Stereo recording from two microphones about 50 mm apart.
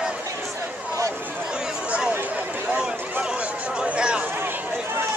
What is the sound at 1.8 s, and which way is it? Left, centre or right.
Chatter, right.